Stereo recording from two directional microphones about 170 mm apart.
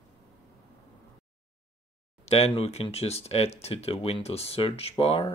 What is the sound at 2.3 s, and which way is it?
Speech, 35° left (ahead or behind).